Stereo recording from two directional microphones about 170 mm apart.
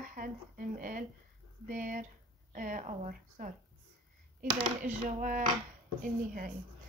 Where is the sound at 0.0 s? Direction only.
55° right (ahead or behind).